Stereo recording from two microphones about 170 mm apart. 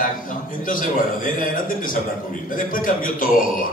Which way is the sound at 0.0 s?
50° left (ahead or behind).